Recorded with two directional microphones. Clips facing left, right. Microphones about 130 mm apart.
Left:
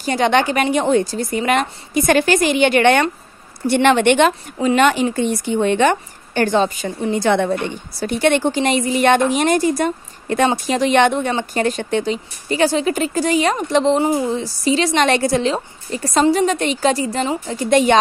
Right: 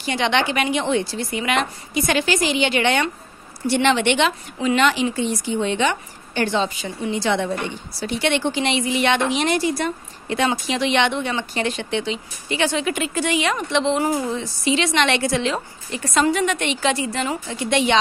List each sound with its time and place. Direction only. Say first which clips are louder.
0.0 s a woman's voice: left 5 dB; 40° left (ahead or behind)
13.9 s a woman's voice: left 4 dB; 25° left (ahead or behind); by 17.9 s 45° left (ahead or behind)